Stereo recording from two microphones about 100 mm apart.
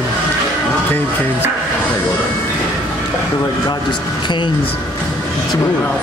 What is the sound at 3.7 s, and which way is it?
Speech, 50° left (ahead or behind).